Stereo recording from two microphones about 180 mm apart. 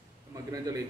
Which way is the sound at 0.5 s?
20° right (ahead or behind).